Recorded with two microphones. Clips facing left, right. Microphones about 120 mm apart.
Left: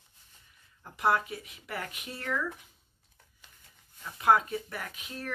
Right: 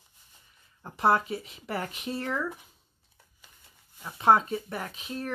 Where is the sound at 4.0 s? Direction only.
30° right (ahead or behind).